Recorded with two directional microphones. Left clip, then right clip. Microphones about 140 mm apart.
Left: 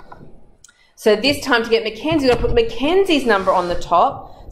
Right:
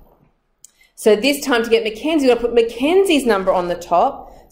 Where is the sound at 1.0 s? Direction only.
25° right (ahead or behind).